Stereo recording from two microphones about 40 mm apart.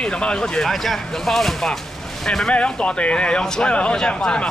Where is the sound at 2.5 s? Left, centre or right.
Left.